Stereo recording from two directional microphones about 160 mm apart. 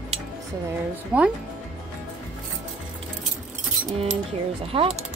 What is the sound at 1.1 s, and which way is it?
Speech, 5° right (ahead or behind).